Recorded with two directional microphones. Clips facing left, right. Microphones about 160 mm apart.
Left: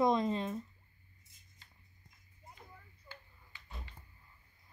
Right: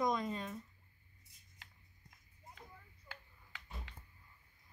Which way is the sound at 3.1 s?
90° right.